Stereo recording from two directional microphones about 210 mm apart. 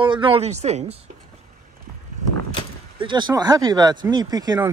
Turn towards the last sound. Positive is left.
turn(degrees=-20)  # may be behind; listen again after turning